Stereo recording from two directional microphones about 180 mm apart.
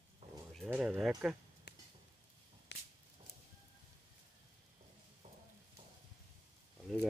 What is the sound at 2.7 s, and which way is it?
Whip, 70° left (ahead or behind).